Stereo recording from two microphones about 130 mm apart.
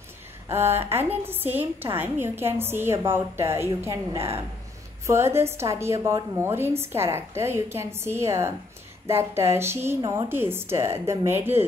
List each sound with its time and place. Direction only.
0.5 s a woman's voice: 20° right (ahead or behind)